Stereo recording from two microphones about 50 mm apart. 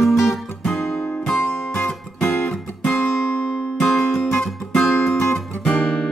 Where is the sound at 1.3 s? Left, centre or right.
Left.